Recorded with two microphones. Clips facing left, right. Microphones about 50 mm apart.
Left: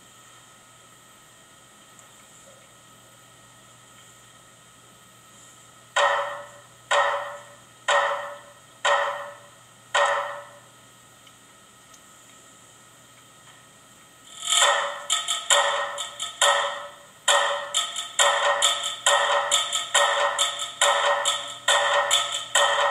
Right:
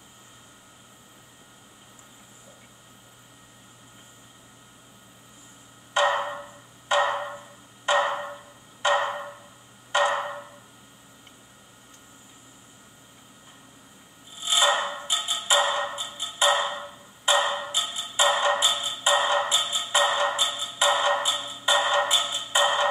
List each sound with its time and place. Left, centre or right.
5.9 s wood block: centre
7.1 s a sound: centre
7.3 s wood block: centre
14.5 s a sound: centre
15.3 s wood block: centre
16.3 s tick-tock: centre
17.9 s music: centre
20.3 s music: centre
20.9 s music: centre